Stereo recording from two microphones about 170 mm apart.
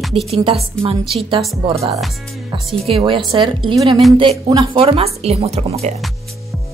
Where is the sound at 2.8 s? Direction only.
30° right (ahead or behind).